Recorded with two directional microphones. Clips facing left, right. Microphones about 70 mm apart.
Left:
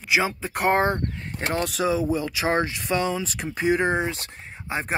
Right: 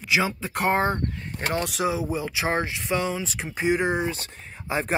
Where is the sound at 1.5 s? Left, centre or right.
Left.